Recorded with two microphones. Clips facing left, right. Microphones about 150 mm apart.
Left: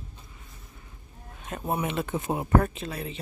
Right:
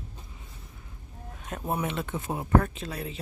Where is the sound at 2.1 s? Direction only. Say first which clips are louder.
Left 1 dB; 20° left (ahead or behind).